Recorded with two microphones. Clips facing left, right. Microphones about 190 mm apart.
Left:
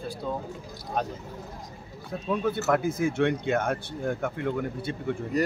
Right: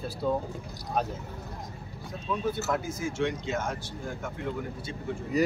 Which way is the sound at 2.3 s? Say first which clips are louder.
Left 4 dB; 60° left (ahead or behind).